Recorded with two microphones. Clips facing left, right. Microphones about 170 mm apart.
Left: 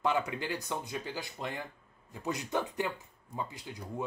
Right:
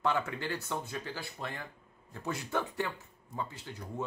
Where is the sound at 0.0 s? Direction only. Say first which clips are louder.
Left 1 dB; 15° left (ahead or behind).